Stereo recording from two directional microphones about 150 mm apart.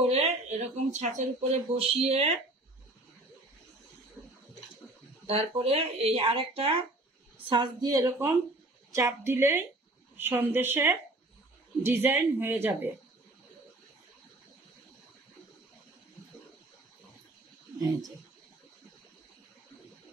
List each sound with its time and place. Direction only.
0.0 s speech: 45° right (ahead or behind)
5.2 s a woman's voice: 40° right (ahead or behind); by 12.9 s 15° right (ahead or behind)